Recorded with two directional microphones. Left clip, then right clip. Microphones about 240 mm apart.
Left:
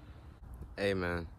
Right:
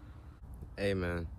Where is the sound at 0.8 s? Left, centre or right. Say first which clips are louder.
Left 1 dB; centre.